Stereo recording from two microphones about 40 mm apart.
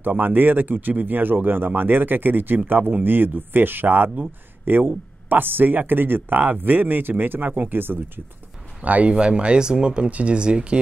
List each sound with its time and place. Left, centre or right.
0.0 s speech: right
7.4 s speech: right
7.7 s speech: right
8.8 s speech: right
9.1 s speech: right